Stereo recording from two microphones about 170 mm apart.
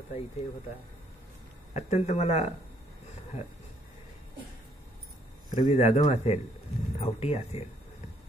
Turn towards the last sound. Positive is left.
turn(degrees=40)  # may be behind; listen again after turning